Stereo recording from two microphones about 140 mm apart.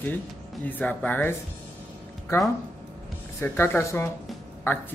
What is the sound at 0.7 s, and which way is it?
Speech, 10° left (ahead or behind).